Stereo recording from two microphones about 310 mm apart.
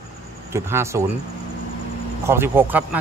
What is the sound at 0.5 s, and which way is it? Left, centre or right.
Speech, centre.